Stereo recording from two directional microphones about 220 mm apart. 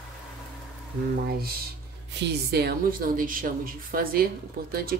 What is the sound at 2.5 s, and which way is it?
A woman's voice, 45° right (ahead or behind).